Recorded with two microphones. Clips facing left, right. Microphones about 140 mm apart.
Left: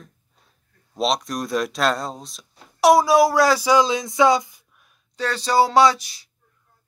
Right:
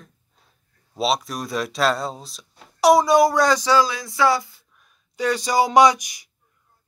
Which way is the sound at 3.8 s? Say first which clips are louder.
Left 3 dB; 20° left (ahead or behind).